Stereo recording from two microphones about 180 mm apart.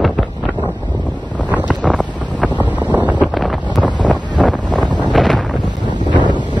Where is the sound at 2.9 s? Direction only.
10° right (ahead or behind).